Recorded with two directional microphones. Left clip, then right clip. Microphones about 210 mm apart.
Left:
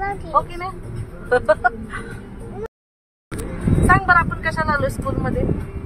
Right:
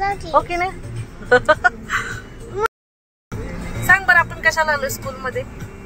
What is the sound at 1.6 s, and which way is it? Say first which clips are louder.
Speech: right 3 dB; 10° left (ahead or behind).